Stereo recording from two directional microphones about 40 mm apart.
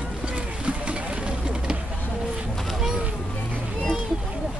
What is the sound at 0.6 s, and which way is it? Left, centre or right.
Vehicle, right.